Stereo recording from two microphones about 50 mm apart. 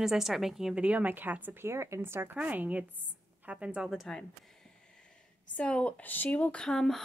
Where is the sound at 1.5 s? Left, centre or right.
Right.